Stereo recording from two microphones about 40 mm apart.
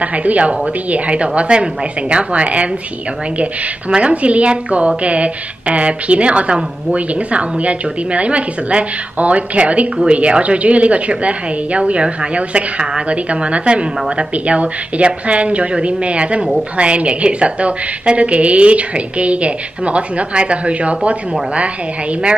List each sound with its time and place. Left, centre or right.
0.0 s a woman's voice: right
3.9 s a woman's voice: right